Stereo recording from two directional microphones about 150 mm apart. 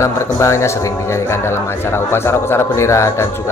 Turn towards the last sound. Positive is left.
turn(degrees=20)  # may be behind; listen again after turning